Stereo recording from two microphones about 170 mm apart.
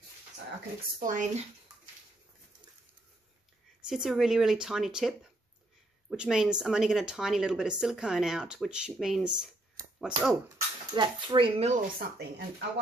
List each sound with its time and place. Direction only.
0.9 s speech: 50° right (ahead or behind)
3.9 s speech: centre (ahead or behind)
11.0 s speech: 30° right (ahead or behind)
12.2 s speech: 75° right (ahead or behind)